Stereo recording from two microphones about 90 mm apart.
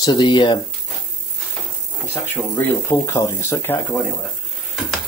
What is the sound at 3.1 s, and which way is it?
Speech, 30° left (ahead or behind).